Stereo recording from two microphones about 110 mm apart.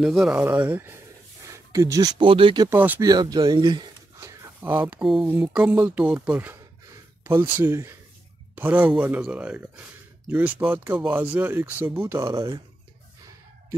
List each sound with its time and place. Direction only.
0.0 s speech: 5° right (ahead or behind)
0.3 s speech: 15° right (ahead or behind)
1.5 s a sound: 30° right (ahead or behind)
2.1 s speech: 50° right (ahead or behind)
2.7 s speech: 15° right (ahead or behind)
3.0 s speech: 35° right (ahead or behind)
4.2 s a sound: 30° right (ahead or behind)
4.6 s speech: 15° right (ahead or behind)